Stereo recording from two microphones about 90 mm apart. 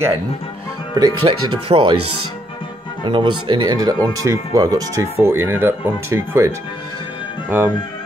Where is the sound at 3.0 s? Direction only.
70° right (ahead or behind).